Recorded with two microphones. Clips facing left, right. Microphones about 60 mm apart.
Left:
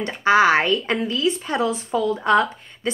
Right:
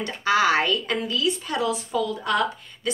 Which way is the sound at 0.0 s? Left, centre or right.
Left.